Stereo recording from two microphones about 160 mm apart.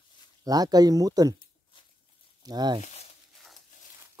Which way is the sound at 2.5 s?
25° right (ahead or behind).